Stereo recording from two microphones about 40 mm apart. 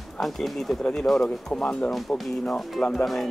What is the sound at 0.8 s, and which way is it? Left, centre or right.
Speech, centre.